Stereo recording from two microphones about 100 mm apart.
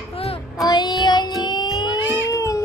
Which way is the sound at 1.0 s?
45° left (ahead or behind).